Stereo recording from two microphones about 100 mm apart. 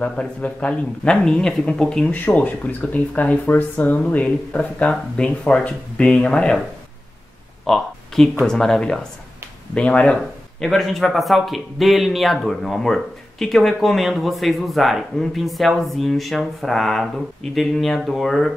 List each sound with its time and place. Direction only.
0.0 s speech: 10° left (ahead or behind)
7.6 s speech: 5° left (ahead or behind)